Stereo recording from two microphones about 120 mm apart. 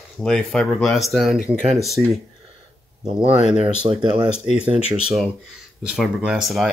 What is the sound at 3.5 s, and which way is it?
Speech, 55° right (ahead or behind).